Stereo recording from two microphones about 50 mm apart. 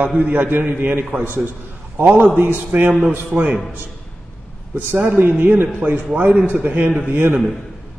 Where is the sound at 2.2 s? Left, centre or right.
Right.